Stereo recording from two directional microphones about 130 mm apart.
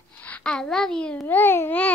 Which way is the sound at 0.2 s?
10° left (ahead or behind).